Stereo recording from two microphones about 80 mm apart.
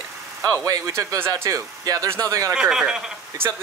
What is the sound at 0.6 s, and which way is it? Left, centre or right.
Speech, right.